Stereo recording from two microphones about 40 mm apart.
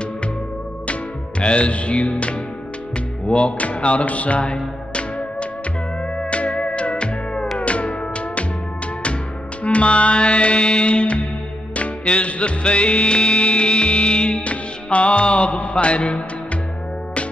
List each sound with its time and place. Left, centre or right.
1.4 s music: left
6.1 s music: left
9.6 s music: left